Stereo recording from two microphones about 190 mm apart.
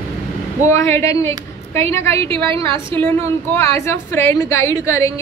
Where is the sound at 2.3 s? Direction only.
25° right (ahead or behind).